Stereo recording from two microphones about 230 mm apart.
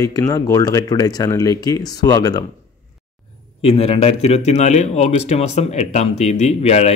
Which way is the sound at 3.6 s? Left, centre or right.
Left.